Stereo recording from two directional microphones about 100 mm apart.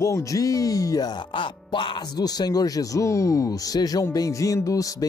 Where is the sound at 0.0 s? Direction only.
30° left (ahead or behind).